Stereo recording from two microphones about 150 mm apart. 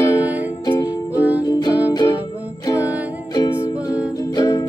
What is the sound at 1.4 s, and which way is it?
Music, 25° left (ahead or behind).